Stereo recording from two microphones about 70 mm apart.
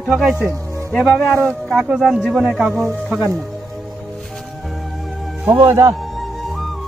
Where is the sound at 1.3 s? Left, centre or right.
Centre.